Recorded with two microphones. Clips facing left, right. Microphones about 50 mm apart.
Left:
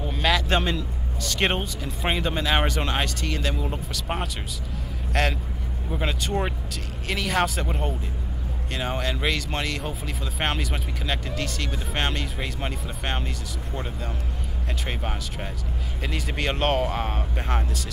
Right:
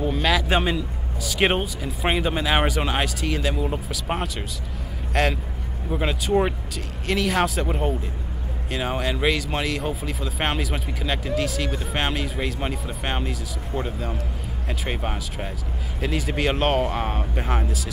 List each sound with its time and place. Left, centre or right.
0.0 s speech: centre